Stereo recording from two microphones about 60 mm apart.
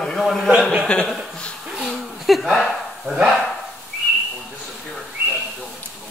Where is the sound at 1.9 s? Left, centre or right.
Centre.